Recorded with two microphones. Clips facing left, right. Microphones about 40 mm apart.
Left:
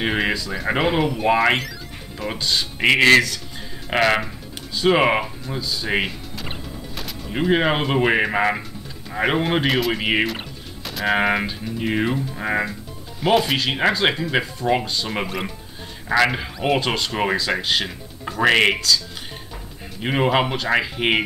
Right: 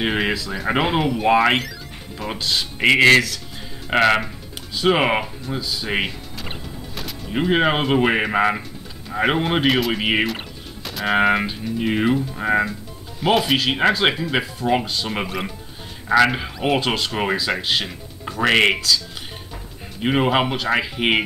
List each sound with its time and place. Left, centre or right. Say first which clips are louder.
0.0 s speech: even; centre
20.0 s speech: right 1 dB; centre